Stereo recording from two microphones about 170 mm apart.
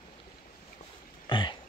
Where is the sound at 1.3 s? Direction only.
30° left (ahead or behind).